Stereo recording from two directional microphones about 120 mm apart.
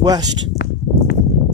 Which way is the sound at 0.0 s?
30° right (ahead or behind).